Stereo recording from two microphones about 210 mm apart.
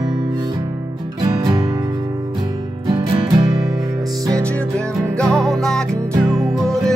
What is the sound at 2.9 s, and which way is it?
Music, 20° right (ahead or behind).